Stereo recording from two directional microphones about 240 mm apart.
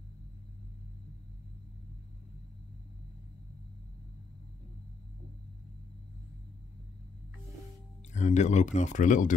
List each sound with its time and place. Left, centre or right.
8.1 s speech: left